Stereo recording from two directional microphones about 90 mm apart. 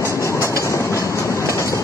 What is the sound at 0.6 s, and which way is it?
Train, 35° left (ahead or behind).